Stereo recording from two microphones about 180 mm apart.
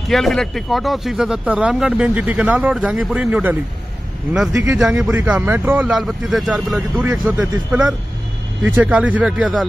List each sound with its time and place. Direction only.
0.1 s speech: centre (ahead or behind)
4.6 s speech: 5° right (ahead or behind)